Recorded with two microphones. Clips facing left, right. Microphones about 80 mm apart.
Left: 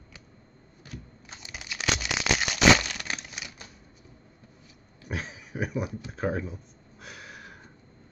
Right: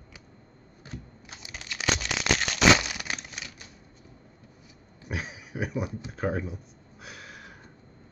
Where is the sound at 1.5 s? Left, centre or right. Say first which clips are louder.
Right 1 dB; centre.